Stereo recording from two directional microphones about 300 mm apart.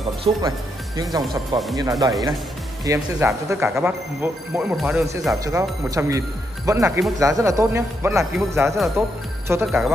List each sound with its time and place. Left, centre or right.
0.2 s speech: centre